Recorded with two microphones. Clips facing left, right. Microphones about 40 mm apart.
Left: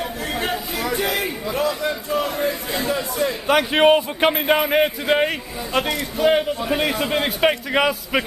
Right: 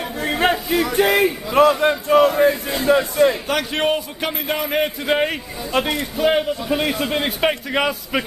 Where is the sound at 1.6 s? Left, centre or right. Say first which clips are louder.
Right 9 dB; right.